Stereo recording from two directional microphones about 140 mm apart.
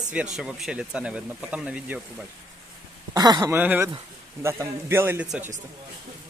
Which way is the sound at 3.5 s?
15° right (ahead or behind).